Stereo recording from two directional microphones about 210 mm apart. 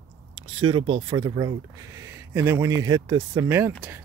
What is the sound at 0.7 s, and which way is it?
Speech, 25° right (ahead or behind).